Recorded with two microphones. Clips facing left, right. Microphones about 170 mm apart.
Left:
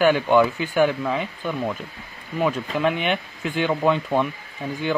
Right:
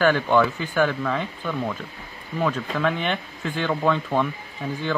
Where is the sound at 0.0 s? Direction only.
15° left (ahead or behind).